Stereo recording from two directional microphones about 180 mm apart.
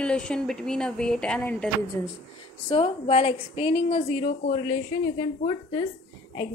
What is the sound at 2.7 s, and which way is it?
A woman's voice, 30° left (ahead or behind).